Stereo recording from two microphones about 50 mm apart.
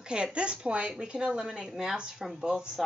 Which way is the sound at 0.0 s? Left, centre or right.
Centre.